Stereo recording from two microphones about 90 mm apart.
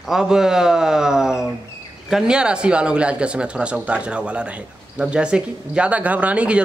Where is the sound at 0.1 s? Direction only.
5° right (ahead or behind).